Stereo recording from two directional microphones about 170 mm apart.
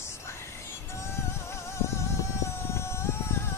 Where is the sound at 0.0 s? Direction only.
15° left (ahead or behind).